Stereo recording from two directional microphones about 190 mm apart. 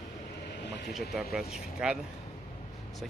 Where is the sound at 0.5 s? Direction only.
65° left (ahead or behind).